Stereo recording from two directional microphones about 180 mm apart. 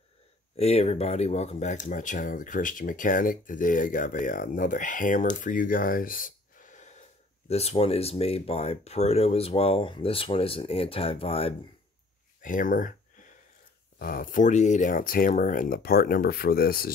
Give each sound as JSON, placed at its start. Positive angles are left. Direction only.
{"t": 0.6, "sound": "speech", "side_deg": 35}
{"t": 12.4, "sound": "speech", "side_deg": 50}
{"t": 13.9, "sound": "speech", "side_deg": 50}